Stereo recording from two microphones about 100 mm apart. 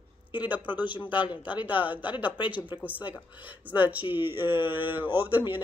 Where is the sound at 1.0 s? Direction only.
50° left (ahead or behind).